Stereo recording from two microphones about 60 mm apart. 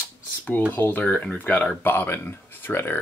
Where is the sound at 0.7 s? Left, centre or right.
Left.